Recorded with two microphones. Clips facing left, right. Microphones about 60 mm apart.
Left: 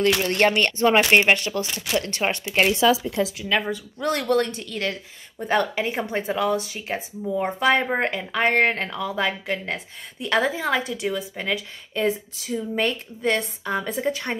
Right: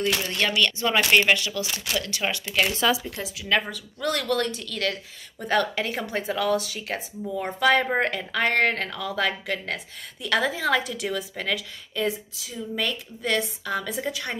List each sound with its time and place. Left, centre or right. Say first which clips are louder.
0.2 s speech: left 5 dB; left
3.4 s speech: right 3 dB; centre
3.7 s speech: left 3 dB; left
11.5 s speech: left 2 dB; left